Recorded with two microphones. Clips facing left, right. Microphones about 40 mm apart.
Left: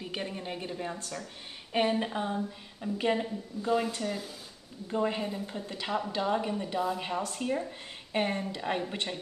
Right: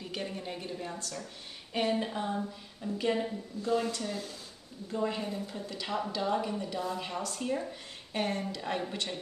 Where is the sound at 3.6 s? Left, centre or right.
Centre.